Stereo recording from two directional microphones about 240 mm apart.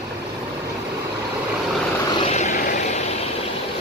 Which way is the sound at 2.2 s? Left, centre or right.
Left.